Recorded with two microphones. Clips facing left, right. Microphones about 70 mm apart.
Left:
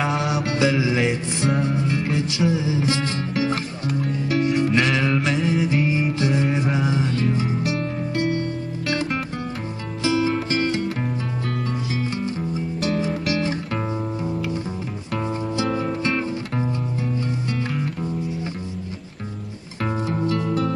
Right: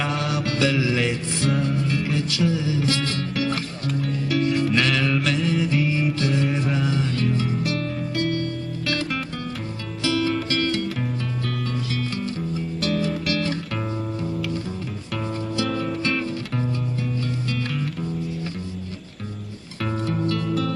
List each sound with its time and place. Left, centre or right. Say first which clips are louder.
0.0 s mantra: left 2 dB; left
1.8 s music: left 1 dB; left
4.4 s music: left 2 dB; left
10.0 s music: left 2 dB; left
13.3 s music: left 3 dB; left
15.1 s music: left 2 dB; left
19.8 s music: left 1 dB; centre